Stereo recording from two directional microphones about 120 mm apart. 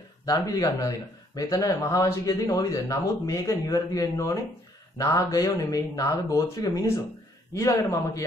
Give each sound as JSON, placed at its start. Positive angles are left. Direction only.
{"t": 0.2, "sound": "speech", "side_deg": 30}